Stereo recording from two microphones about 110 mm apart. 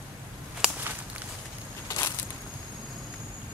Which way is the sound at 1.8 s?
30° left (ahead or behind).